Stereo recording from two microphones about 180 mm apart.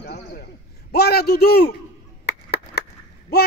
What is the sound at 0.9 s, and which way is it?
Speech, 65° left (ahead or behind).